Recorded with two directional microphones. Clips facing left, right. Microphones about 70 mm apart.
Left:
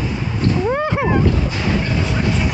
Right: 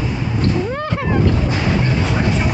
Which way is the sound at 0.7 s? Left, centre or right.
Centre.